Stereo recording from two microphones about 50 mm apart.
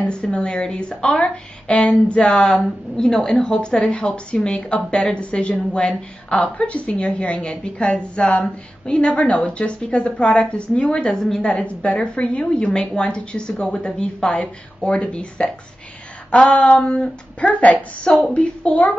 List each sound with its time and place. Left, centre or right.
0.0 s a woman's voice: centre
11.4 s a woman's voice: left